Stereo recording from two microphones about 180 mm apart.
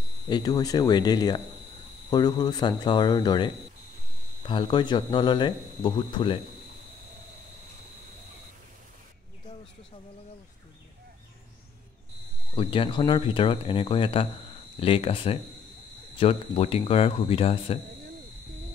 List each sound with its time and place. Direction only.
0.3 s speech: 20° left (ahead or behind)
12.5 s speech: 30° left (ahead or behind)